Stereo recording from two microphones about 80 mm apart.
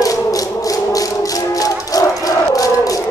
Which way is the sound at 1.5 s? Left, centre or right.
Left.